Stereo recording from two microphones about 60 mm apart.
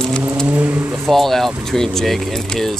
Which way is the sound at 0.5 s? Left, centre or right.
Right.